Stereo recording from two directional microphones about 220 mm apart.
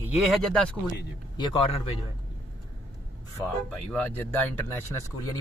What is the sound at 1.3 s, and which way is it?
Speech, 20° left (ahead or behind).